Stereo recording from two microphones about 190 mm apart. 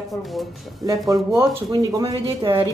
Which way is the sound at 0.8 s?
15° right (ahead or behind).